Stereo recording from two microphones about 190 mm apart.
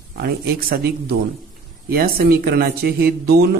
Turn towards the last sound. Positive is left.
turn(degrees=-55)  # may be behind; listen again after turning